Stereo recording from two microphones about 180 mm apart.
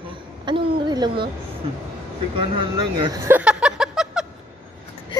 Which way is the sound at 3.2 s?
10° right (ahead or behind).